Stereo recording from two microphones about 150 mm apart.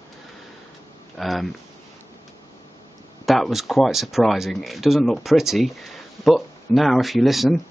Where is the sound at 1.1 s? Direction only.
Centre (ahead or behind).